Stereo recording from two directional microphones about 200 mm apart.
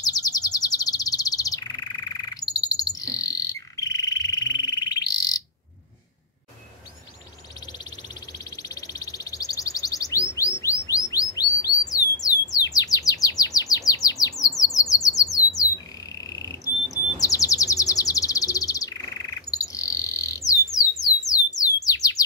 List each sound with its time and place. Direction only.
0.0 s bird: 20° left (ahead or behind)
8.3 s bird: 20° left (ahead or behind)
15.3 s squawk: 15° left (ahead or behind)
16.2 s bird: 15° left (ahead or behind)